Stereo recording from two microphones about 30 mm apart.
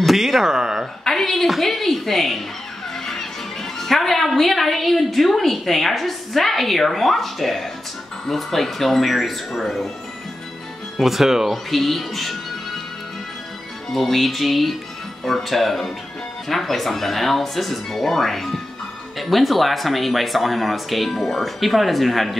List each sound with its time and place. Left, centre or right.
0.0 s a sound: centre
0.4 s speech: centre
1.0 s a sound: centre
1.6 s a woman's voice: centre
3.8 s a woman's voice: centre
11.0 s speech: centre
11.5 s a woman's voice: centre
13.9 s a woman's voice: centre